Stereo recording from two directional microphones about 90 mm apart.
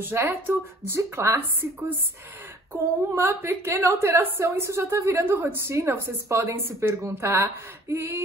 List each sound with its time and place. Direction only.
0.0 s a woman's voice: 25° right (ahead or behind)